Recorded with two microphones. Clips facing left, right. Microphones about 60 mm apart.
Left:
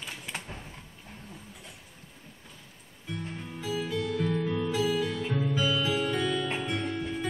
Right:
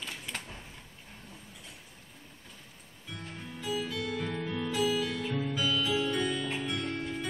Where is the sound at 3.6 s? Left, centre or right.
Centre.